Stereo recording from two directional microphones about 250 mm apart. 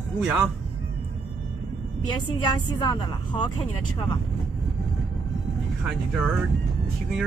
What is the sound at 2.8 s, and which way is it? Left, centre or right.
Speech, centre.